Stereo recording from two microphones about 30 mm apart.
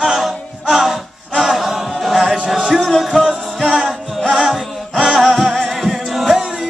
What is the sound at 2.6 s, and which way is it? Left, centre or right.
Music, left.